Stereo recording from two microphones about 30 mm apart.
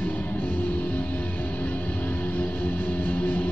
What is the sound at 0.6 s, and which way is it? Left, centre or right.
Music, left.